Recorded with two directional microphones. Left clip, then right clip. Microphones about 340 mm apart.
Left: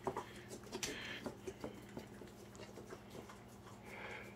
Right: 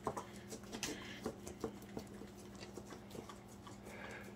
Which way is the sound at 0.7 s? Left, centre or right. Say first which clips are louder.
Left 2 dB; centre.